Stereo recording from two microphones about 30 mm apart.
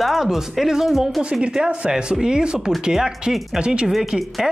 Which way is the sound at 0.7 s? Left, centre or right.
Centre.